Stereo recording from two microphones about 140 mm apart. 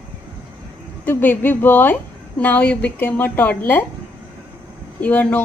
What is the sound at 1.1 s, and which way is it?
A woman's voice, 15° left (ahead or behind).